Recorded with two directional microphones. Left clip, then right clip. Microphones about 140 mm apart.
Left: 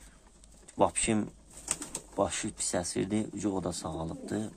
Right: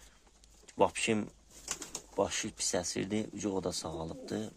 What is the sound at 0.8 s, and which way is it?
Speech, 15° right (ahead or behind).